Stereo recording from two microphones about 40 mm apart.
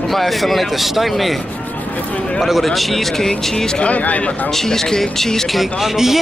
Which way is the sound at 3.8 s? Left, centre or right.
Left.